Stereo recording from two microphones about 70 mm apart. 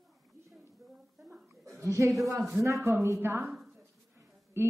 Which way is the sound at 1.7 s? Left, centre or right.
Right.